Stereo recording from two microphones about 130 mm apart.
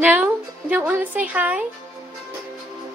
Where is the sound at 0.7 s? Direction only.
15° right (ahead or behind).